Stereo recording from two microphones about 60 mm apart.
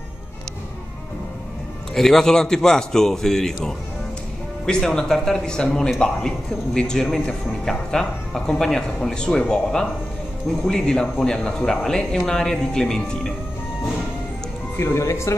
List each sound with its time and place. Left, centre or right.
2.0 s speech: centre
14.8 s speech: left